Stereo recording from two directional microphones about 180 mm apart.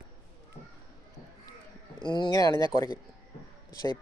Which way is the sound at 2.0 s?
25° left (ahead or behind).